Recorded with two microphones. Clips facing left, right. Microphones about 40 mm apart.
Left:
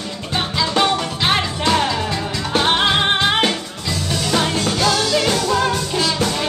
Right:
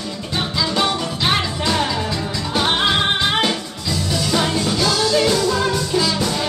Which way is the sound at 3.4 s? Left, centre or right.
Left.